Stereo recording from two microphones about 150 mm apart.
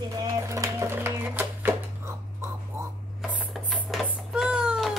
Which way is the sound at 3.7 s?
5° right (ahead or behind).